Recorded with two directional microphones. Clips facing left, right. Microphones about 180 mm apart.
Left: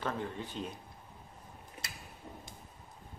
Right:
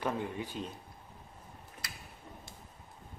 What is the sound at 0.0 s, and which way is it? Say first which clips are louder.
Speech: right 2 dB; 15° right (ahead or behind).